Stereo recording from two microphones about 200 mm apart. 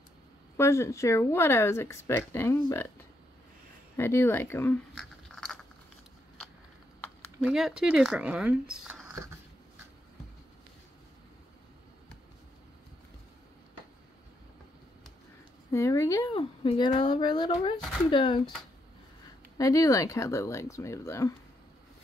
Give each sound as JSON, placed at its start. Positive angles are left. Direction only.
{"t": 0.6, "sound": "speech", "side_deg": 15}
{"t": 3.9, "sound": "a sound", "side_deg": 10}
{"t": 7.4, "sound": "speech", "side_deg": -5}
{"t": 8.8, "sound": "a sound", "side_deg": -10}
{"t": 15.7, "sound": "speech", "side_deg": 15}
{"t": 19.6, "sound": "speech", "side_deg": 15}